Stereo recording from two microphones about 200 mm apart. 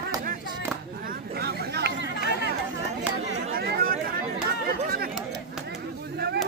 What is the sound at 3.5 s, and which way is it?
Chatter, 50° right (ahead or behind).